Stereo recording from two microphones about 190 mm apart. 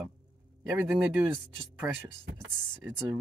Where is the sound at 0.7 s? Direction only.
5° right (ahead or behind).